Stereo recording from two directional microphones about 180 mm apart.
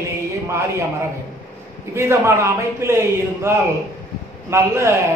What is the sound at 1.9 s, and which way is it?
A woman's voice, 15° right (ahead or behind).